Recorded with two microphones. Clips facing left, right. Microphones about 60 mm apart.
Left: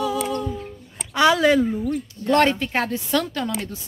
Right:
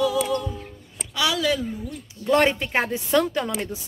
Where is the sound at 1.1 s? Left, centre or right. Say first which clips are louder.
Left 7 dB; left.